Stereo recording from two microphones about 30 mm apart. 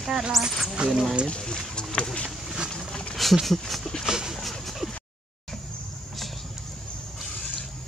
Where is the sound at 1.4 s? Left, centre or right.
Left.